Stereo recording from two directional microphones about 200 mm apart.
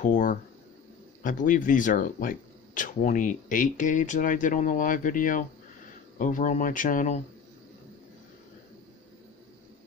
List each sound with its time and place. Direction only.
0.0 s speech: 40° left (ahead or behind)